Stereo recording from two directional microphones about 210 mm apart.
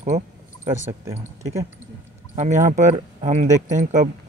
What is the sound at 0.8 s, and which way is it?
Speech, 15° right (ahead or behind).